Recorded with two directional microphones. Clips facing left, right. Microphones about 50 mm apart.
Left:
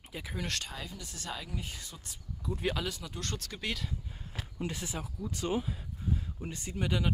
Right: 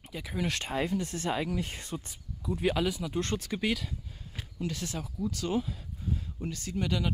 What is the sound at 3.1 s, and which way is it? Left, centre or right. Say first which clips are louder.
Speech: right 8 dB; right.